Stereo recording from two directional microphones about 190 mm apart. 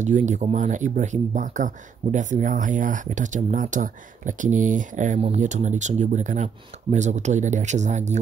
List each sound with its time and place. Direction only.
0.0 s speech: 40° right (ahead or behind)